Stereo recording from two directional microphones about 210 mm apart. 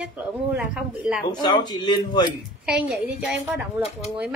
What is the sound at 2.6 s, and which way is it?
Speech, 5° right (ahead or behind).